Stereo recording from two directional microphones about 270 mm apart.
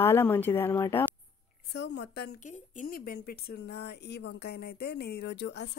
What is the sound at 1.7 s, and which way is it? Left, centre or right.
Speech, left.